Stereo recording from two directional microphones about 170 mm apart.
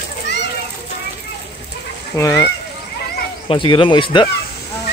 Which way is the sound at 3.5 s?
30° left (ahead or behind).